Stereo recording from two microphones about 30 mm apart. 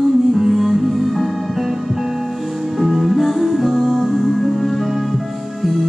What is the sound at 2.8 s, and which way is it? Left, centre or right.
Music, centre.